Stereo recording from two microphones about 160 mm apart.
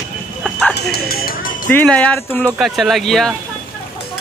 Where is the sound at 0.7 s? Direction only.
85° left; by 1.7 s 60° left (ahead or behind).